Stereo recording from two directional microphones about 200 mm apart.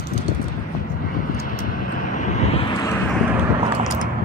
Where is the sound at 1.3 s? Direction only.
45° left (ahead or behind).